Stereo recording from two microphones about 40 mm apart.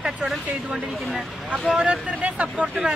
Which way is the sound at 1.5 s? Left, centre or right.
Right.